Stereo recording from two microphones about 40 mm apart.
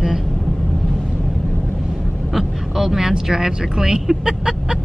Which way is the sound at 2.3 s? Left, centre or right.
Centre.